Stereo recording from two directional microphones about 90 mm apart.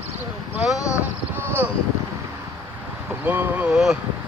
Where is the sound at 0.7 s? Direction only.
35° left (ahead or behind).